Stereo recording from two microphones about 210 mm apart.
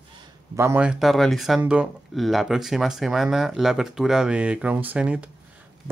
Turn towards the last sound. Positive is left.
turn(degrees=-5)  # may be behind; listen again after turning